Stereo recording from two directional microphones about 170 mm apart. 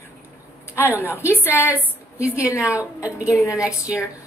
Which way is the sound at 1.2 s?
15° left (ahead or behind).